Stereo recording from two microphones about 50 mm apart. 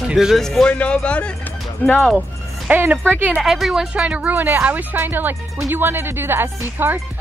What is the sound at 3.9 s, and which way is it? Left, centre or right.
Speech, right.